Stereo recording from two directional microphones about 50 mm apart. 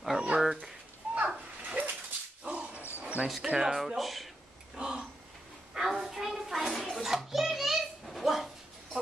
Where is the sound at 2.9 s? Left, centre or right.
Right.